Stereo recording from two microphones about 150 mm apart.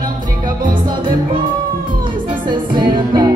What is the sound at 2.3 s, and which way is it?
Music, 30° right (ahead or behind).